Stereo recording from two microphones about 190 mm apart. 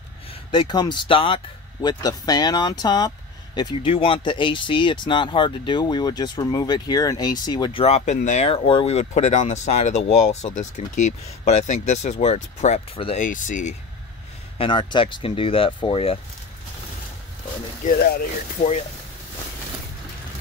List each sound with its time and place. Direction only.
0.3 s speech: 25° left (ahead or behind)
8.5 s speech: 25° left (ahead or behind)
13.2 s speech: 45° left (ahead or behind)
14.6 s speech: 25° left (ahead or behind)
17.8 s speech: 45° left (ahead or behind)